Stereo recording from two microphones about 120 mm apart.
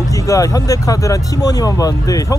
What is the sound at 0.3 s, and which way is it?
Speech, 30° left (ahead or behind).